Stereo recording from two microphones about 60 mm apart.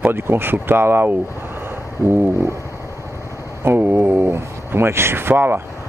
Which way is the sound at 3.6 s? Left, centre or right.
Right.